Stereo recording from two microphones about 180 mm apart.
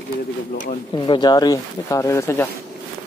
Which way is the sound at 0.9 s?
25° left (ahead or behind).